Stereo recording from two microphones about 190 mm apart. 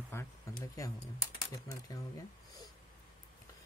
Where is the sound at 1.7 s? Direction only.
15° left (ahead or behind).